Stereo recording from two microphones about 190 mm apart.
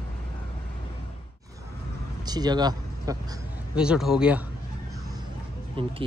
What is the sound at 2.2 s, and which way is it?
Speech, 20° right (ahead or behind).